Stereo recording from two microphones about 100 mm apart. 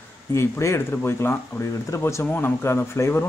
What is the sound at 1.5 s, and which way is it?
Speech, 35° left (ahead or behind).